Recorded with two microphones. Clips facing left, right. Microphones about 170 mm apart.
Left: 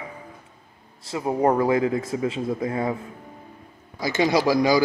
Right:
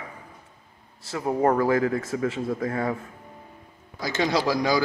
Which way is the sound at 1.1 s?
15° left (ahead or behind).